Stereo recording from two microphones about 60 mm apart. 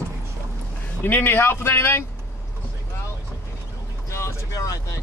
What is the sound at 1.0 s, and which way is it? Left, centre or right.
Speech, left.